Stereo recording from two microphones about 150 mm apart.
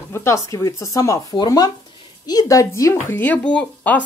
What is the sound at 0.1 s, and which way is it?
Speech, 20° left (ahead or behind).